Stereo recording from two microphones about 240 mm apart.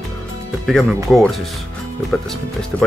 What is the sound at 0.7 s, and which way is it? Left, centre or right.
Speech, centre.